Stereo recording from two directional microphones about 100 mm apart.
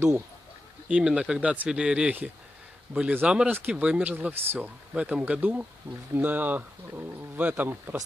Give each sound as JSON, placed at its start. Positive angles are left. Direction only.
{"t": 0.8, "sound": "speech", "side_deg": -10}